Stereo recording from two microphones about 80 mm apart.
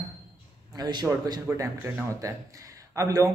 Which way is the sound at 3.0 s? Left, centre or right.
Right.